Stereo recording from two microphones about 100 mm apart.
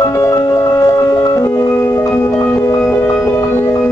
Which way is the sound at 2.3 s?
15° left (ahead or behind).